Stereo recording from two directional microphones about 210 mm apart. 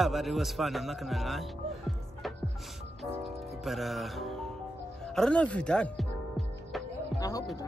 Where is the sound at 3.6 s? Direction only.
Centre (ahead or behind).